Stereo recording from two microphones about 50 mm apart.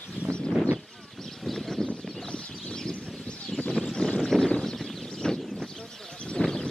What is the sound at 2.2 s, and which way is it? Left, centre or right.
Bird, centre.